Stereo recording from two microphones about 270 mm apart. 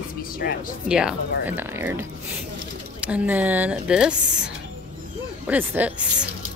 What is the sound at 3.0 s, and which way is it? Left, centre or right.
Speech, centre.